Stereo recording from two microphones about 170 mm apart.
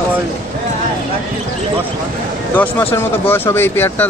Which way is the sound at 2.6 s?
10° left (ahead or behind).